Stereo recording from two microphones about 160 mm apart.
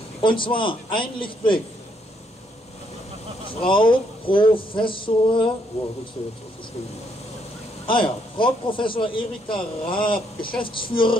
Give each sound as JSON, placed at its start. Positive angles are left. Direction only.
{"t": 0.2, "sound": "a man's voice", "side_deg": 30}
{"t": 3.6, "sound": "a man's voice", "side_deg": 30}
{"t": 7.8, "sound": "a man's voice", "side_deg": 30}